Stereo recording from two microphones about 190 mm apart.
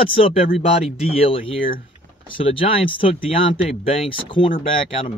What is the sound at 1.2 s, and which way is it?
Speech, 30° left (ahead or behind).